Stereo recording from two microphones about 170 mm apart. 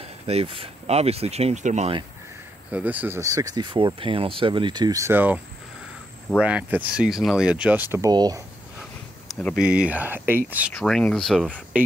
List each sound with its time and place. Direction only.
0.0 s speech: 35° right (ahead or behind)
2.7 s speech: 10° right (ahead or behind)
6.4 s speech: 10° right (ahead or behind)
8.1 s speech: 25° right (ahead or behind)
9.3 s speech: 5° left (ahead or behind)
9.6 s speech: 5° right (ahead or behind)
10.7 s speech: 5° left (ahead or behind)